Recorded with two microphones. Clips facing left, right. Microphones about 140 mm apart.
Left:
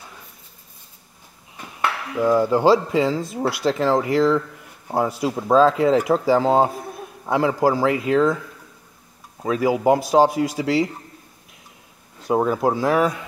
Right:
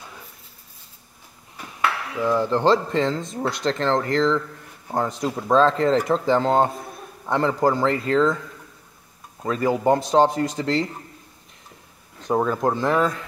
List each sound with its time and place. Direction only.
2.1 s speech: 10° left (ahead or behind)
9.4 s speech: 10° left (ahead or behind)
12.2 s speech: 10° left (ahead or behind)